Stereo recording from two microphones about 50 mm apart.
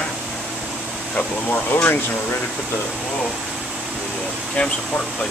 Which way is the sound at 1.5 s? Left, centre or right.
Left.